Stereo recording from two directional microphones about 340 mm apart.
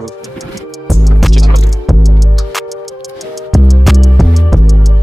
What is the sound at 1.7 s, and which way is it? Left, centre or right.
Music, centre.